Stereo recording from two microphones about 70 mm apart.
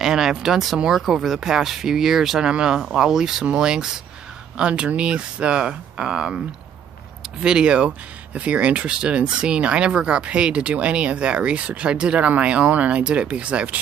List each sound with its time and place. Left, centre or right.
0.0 s speech: centre
7.4 s speech: centre